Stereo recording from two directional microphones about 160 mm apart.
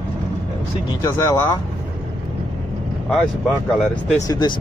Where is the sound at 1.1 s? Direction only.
15° left (ahead or behind).